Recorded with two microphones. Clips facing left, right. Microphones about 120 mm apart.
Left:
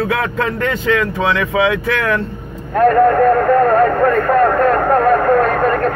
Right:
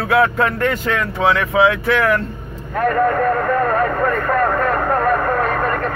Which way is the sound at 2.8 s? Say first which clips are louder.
Left 6 dB; 35° left (ahead or behind).